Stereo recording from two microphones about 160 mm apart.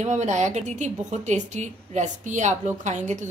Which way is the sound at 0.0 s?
45° right (ahead or behind).